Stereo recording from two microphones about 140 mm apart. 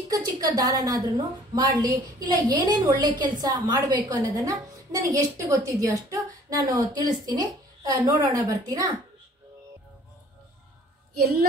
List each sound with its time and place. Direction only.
0.1 s a woman's voice: 25° right (ahead or behind)